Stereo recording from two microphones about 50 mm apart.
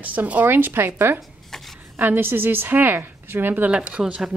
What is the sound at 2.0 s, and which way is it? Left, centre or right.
A woman's voice, right.